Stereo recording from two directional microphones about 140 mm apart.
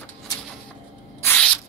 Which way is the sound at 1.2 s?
5° left (ahead or behind).